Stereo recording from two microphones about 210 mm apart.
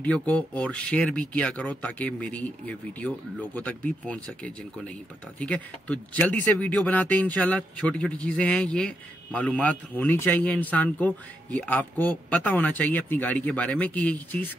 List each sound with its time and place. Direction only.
0.0 s speech: 5° left (ahead or behind)